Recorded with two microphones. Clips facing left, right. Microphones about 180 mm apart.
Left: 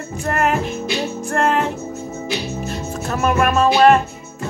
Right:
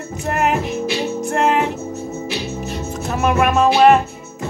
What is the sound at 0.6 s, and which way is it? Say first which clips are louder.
Music: right 2 dB; 70° right (ahead or behind).